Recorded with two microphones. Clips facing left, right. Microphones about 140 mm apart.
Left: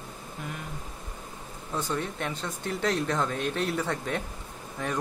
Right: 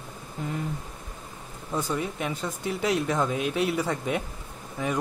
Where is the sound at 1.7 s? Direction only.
10° right (ahead or behind).